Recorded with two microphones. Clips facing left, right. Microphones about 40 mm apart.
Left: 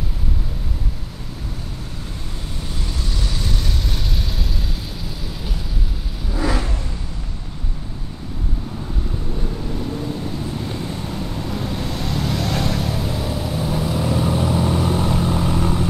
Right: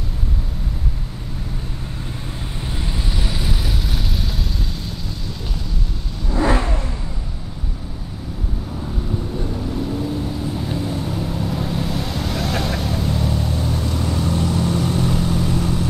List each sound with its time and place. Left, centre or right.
2.8 s vehicle: centre
6.4 s vehicle: right
9.8 s vehicle: centre